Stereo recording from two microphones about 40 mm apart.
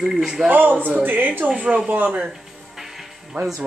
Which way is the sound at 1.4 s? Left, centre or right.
Right.